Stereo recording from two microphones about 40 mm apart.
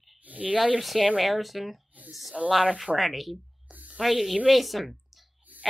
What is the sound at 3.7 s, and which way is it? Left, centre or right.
Spray, right.